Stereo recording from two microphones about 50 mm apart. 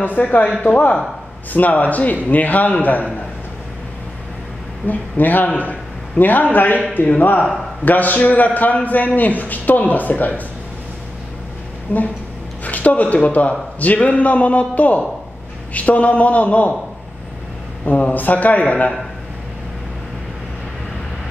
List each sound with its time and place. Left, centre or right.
0.0 s a man's voice: left
0.7 s a man's voice: left
4.8 s a man's voice: left
11.9 s a man's voice: left
17.8 s a man's voice: left